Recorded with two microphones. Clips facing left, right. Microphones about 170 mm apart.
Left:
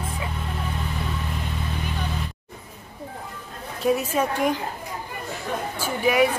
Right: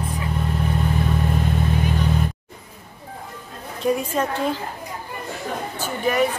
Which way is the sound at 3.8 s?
5° left (ahead or behind).